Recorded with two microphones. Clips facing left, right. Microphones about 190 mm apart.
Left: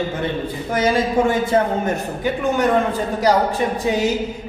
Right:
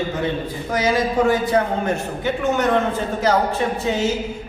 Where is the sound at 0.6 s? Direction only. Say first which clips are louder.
Left 1 dB; 25° left (ahead or behind).